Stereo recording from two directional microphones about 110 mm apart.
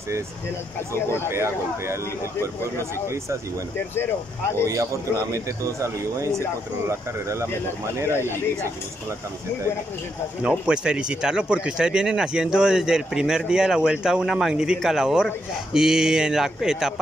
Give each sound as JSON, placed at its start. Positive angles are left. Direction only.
{"t": 1.3, "sound": "speech", "side_deg": -25}
{"t": 3.7, "sound": "speech", "side_deg": 20}
{"t": 5.3, "sound": "speech", "side_deg": -30}
{"t": 10.4, "sound": "speech", "side_deg": -10}